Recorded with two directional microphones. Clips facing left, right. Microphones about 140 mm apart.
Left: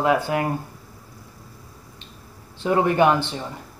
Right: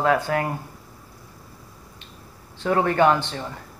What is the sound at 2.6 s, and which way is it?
Speech, 20° left (ahead or behind).